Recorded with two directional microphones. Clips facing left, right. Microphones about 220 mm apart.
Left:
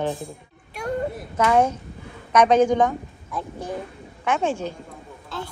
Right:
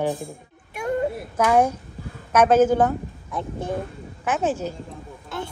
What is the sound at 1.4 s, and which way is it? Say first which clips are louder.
A woman's voice: even; 5° right (ahead or behind).